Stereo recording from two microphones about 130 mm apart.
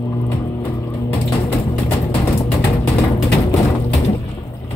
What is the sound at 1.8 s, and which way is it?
Music, 40° left (ahead or behind).